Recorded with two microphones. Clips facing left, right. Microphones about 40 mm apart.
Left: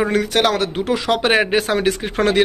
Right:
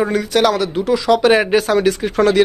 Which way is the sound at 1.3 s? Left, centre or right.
Left.